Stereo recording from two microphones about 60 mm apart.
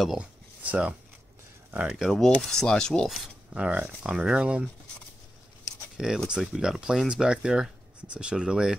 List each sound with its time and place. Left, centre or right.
0.2 s a sound: right
2.0 s speech: centre
3.5 s speech: centre
5.9 s speech: centre